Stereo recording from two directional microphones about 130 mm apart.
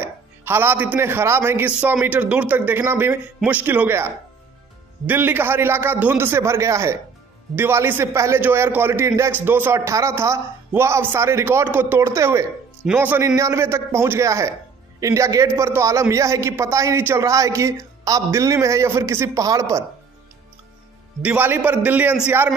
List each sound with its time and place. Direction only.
0.0 s a man's voice: 15° right (ahead or behind)
21.2 s a man's voice: 10° right (ahead or behind)